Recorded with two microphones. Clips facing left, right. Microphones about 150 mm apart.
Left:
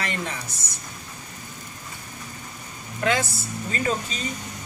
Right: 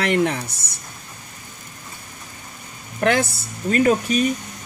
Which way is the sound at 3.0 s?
65° right (ahead or behind).